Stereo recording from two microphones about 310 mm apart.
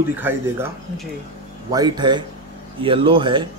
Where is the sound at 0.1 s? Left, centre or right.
Centre.